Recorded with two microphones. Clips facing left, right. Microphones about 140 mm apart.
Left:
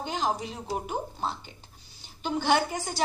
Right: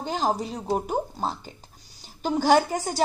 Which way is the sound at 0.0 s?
40° right (ahead or behind).